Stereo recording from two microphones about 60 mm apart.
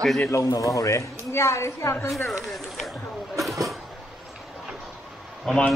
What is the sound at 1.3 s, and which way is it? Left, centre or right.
Speech, left.